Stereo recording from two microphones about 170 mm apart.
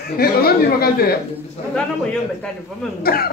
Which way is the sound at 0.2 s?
65° left (ahead or behind).